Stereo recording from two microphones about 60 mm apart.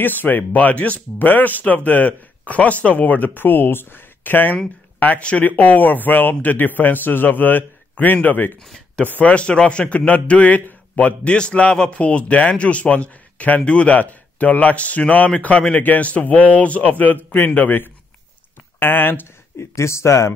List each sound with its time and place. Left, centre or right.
0.0 s a man's voice: left
9.2 s a man's voice: centre; by 19.2 s left
19.6 s speech: left